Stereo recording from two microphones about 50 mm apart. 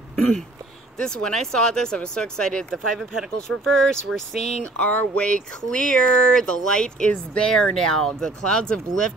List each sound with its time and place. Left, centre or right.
0.9 s speech: centre
4.7 s speech: left